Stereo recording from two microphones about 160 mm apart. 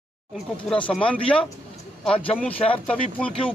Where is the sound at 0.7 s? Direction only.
5° left (ahead or behind).